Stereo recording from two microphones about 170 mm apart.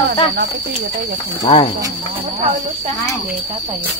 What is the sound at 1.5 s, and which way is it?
Speech, 30° left (ahead or behind).